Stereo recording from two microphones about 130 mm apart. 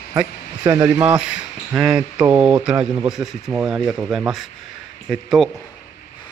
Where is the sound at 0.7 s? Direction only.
20° right (ahead or behind); by 5.5 s centre (ahead or behind).